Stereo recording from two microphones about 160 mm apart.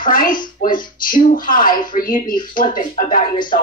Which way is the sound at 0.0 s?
60° left (ahead or behind).